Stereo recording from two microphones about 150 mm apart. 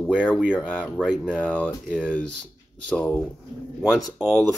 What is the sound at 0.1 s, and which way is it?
Speech, 5° right (ahead or behind).